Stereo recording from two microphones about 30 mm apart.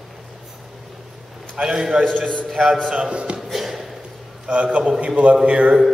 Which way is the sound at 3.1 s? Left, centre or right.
Right.